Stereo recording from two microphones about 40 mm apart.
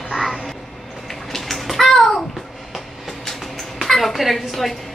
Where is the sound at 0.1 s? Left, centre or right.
Centre.